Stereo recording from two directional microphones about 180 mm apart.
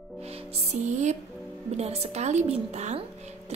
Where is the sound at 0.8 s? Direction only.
40° right (ahead or behind).